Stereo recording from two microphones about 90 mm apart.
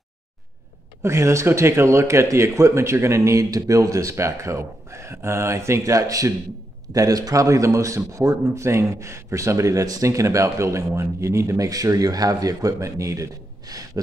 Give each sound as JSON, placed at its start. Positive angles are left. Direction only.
{"t": 1.0, "sound": "a man's voice", "side_deg": -30}